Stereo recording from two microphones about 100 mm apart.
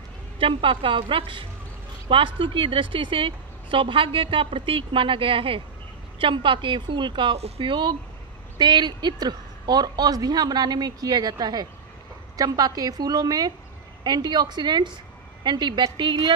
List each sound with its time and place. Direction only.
0.4 s a woman's voice: 65° right (ahead or behind)
7.3 s a woman's voice: 80° right; by 16.3 s 50° right (ahead or behind)